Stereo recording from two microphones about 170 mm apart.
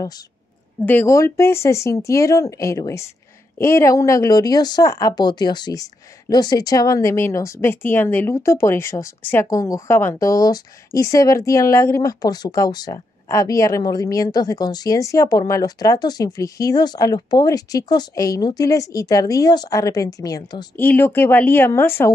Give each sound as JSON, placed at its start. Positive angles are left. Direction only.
{"t": 0.8, "sound": "speech", "side_deg": 15}